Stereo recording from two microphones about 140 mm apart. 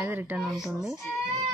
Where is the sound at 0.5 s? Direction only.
5° right (ahead or behind).